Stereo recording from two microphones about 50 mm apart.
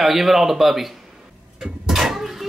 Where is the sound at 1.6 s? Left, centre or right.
Centre.